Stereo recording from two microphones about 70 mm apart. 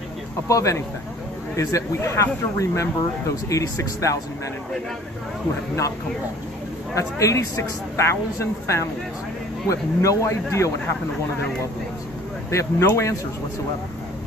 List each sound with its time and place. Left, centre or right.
0.5 s speech: left
7.0 s speech: left
12.4 s speech: left